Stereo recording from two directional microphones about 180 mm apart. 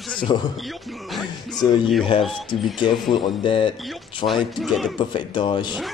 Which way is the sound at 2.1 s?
30° left (ahead or behind).